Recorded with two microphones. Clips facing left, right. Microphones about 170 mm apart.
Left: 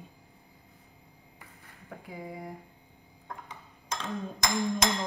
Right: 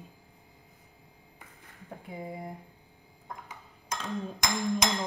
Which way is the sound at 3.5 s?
Centre (ahead or behind).